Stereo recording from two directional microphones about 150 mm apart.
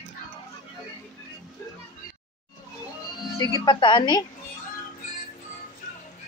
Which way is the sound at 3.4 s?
25° left (ahead or behind).